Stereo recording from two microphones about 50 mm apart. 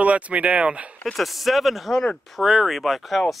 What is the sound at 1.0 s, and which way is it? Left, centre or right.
Speech, centre.